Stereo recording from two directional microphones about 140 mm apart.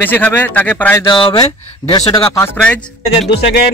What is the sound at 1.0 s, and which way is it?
Speech, 35° left (ahead or behind).